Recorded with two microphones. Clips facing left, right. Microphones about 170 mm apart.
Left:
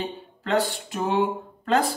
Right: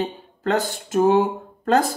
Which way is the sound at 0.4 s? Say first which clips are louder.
Right 2 dB; 45° right (ahead or behind).